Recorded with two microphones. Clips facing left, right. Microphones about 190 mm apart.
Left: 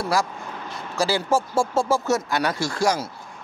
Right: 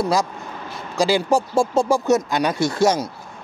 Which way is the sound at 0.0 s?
20° right (ahead or behind).